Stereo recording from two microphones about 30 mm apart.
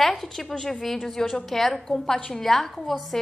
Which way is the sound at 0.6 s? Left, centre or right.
Centre.